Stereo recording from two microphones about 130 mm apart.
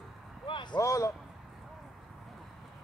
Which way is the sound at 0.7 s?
25° left (ahead or behind).